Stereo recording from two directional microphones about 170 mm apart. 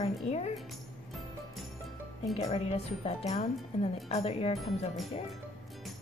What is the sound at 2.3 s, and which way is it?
Speech, 35° left (ahead or behind).